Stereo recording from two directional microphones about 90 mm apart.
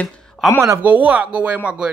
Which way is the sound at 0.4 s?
5° left (ahead or behind).